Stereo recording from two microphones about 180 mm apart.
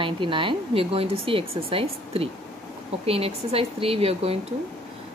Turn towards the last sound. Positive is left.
turn(degrees=-35)  # may be behind; listen again after turning